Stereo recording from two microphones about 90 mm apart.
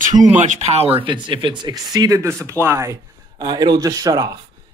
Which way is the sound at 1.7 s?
45° right (ahead or behind).